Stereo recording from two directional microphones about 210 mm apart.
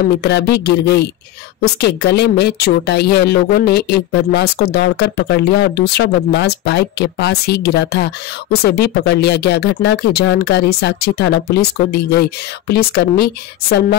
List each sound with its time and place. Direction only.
0.2 s a woman's voice: 55° left (ahead or behind)
12.6 s a woman's voice: 50° left (ahead or behind)